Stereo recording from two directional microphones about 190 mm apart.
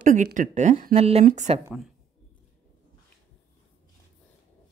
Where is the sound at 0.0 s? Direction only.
40° right (ahead or behind).